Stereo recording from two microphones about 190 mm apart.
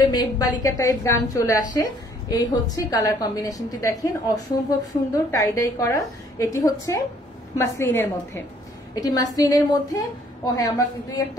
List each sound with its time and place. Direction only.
0.1 s a woman's voice: 20° left (ahead or behind)